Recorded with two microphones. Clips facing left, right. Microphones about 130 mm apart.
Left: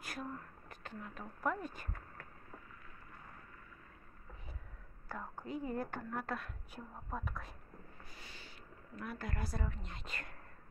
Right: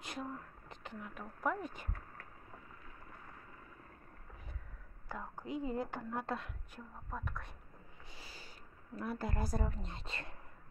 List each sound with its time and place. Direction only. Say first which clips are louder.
0.0 s speech: right 1 dB; 20° right (ahead or behind)
5.0 s a woman's voice: even; 15° right (ahead or behind)
6.2 s speech: right 1 dB; 25° right (ahead or behind)
6.7 s speech: left 2 dB; 5° left (ahead or behind)
8.1 s a sound: right 4 dB; 30° right (ahead or behind)
8.9 s speech: right 4 dB; 30° right (ahead or behind)
9.4 s a woman's voice: right 4 dB; 40° right (ahead or behind)